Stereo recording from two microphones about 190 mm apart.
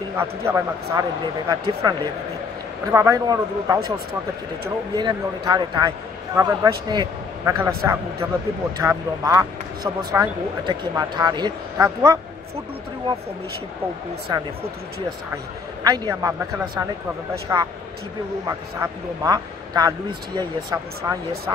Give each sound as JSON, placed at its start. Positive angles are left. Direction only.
{"t": 0.2, "sound": "a man's voice", "side_deg": -10}
{"t": 14.3, "sound": "a man's voice", "side_deg": -20}
{"t": 15.8, "sound": "a man's voice", "side_deg": -20}
{"t": 18.8, "sound": "a man's voice", "side_deg": -20}